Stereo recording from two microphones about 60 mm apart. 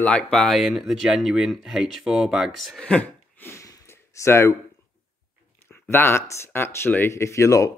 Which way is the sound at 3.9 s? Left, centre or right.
Left.